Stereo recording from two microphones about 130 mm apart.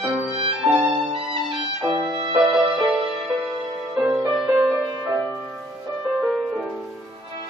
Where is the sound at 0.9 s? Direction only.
40° right (ahead or behind).